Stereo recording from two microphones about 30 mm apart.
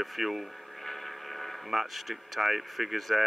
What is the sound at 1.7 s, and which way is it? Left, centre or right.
Speech, centre.